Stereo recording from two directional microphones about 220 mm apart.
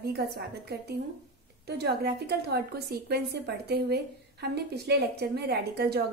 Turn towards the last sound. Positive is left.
turn(degrees=-45)  # may be behind; listen again after turning